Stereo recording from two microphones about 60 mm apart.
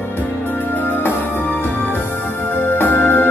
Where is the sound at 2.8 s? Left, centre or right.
Left.